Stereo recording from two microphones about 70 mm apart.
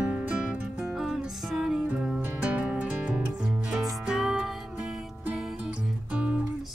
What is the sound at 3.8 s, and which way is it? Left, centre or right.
Music, centre.